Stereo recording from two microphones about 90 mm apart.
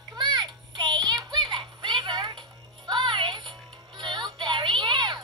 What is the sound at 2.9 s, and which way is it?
Music, 60° right (ahead or behind).